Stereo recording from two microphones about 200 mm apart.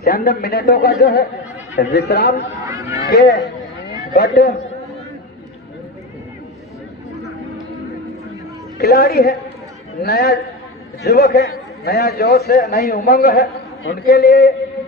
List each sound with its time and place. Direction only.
0.0 s a man's voice: 50° left (ahead or behind)
2.6 s speech: 15° right (ahead or behind)
3.4 s a sound: 55° left (ahead or behind)
8.7 s a man's voice: 55° left (ahead or behind)